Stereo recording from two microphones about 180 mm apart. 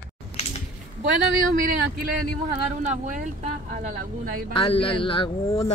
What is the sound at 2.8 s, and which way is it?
Speech, 45° right (ahead or behind).